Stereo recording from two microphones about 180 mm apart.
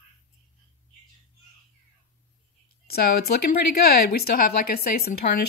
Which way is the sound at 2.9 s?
60° left (ahead or behind).